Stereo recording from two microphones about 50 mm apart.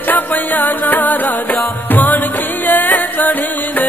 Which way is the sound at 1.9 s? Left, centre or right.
Left.